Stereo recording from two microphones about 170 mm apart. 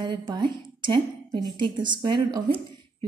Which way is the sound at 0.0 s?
25° right (ahead or behind).